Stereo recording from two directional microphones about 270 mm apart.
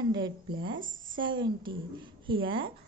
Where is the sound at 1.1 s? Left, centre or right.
Centre.